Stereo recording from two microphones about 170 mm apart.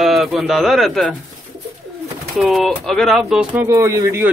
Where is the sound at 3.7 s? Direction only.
20° right (ahead or behind).